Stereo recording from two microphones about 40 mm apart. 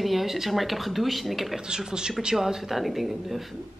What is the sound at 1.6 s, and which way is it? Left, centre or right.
A woman's voice, centre.